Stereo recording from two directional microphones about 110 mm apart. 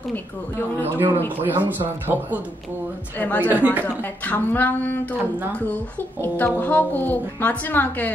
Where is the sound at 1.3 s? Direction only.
15° right (ahead or behind).